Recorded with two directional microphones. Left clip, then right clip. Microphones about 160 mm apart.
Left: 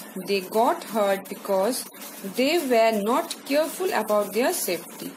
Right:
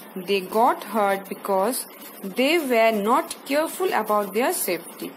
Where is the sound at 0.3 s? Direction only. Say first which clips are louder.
Right 2 dB; 20° right (ahead or behind).